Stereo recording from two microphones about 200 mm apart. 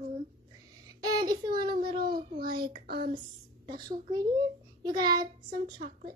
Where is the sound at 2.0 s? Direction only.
50° right (ahead or behind).